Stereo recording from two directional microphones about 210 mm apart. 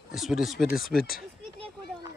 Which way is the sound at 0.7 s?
45° left (ahead or behind).